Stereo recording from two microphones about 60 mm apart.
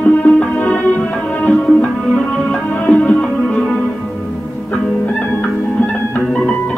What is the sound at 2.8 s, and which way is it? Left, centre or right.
Music, left.